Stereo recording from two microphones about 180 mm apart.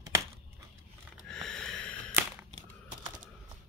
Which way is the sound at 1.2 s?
5° left (ahead or behind).